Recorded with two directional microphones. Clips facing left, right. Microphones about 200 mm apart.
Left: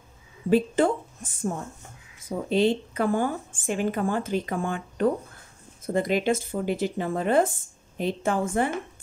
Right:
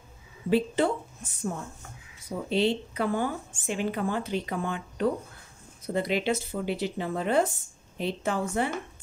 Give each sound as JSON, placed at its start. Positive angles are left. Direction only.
{"t": 0.5, "sound": "speech", "side_deg": 50}